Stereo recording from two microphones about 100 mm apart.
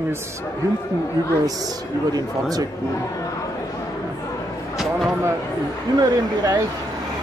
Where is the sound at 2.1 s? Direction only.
40° right (ahead or behind).